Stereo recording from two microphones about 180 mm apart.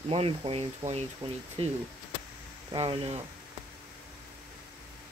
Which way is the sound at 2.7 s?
30° right (ahead or behind).